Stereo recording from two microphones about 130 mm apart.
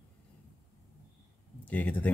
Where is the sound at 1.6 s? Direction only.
10° left (ahead or behind).